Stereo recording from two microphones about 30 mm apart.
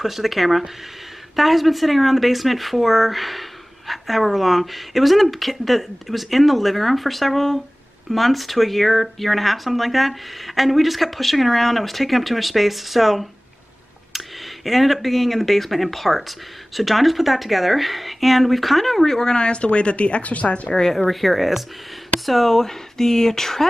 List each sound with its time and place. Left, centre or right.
0.0 s speech: centre
19.0 s speech: left
21.1 s speech: centre
22.6 s speech: centre